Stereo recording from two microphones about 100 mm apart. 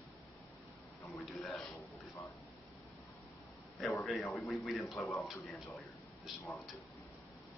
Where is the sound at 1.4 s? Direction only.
5° left (ahead or behind).